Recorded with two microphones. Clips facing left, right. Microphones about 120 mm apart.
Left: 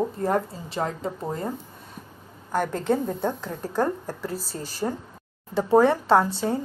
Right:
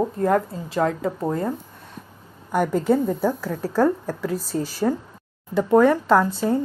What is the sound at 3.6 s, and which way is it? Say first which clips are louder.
Speech: right 5 dB; 90° right.